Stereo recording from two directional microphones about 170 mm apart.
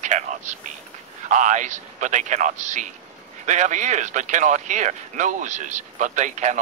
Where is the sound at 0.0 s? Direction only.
45° right (ahead or behind).